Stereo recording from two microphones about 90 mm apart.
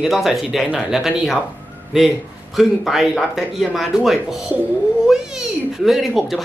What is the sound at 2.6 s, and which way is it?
Speech, centre (ahead or behind).